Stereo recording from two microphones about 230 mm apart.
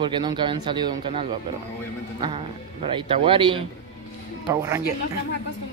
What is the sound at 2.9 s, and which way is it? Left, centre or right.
Speech, right.